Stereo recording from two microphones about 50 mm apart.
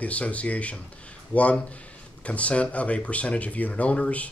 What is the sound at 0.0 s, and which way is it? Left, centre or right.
Speech, left.